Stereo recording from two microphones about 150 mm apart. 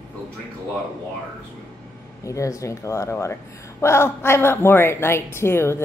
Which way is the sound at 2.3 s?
20° left (ahead or behind).